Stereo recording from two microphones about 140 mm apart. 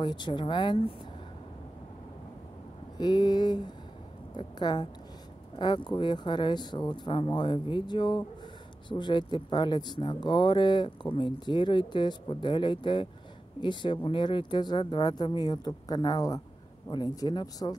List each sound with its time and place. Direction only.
0.0 s speech: 30° left (ahead or behind)
3.0 s speech: 30° left (ahead or behind)